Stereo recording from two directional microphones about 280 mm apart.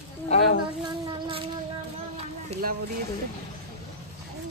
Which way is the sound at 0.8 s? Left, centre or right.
Centre.